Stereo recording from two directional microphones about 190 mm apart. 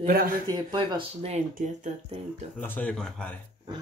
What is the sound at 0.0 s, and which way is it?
Speech, 50° right (ahead or behind).